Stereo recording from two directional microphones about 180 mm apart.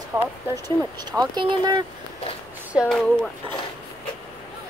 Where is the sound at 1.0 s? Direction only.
25° right (ahead or behind).